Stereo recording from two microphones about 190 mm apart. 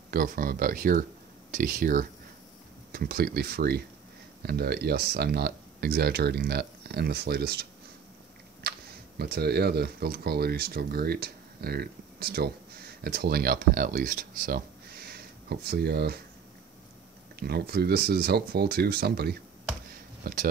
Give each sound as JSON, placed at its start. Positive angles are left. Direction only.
{"t": 0.1, "sound": "speech", "side_deg": -50}
{"t": 8.6, "sound": "chewing", "side_deg": -55}
{"t": 9.2, "sound": "speech", "side_deg": -55}
{"t": 17.4, "sound": "speech", "side_deg": -55}